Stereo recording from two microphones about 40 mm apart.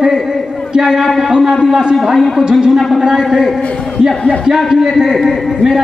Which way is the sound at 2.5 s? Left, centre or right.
Centre.